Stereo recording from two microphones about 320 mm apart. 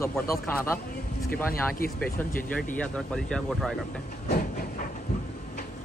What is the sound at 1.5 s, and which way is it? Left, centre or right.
Speech, left.